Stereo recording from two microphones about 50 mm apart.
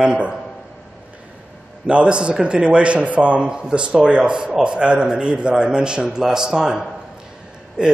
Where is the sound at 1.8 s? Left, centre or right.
Centre.